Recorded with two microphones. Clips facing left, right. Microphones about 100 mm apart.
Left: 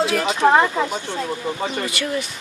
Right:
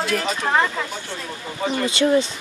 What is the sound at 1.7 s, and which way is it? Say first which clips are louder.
Speech: right 6 dB; 25° right (ahead or behind).